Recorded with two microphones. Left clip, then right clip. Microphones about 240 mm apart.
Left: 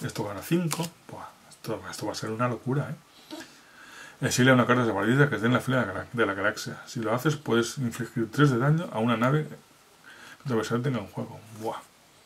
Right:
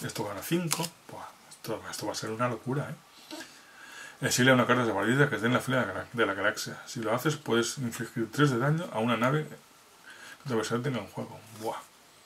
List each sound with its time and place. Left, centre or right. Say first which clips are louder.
0.2 s speech: left 3 dB; centre
0.7 s speech: even; centre
2.2 s speech: left 3 dB; centre